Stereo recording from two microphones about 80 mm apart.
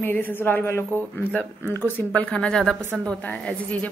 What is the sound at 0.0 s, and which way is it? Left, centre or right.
Speech, left.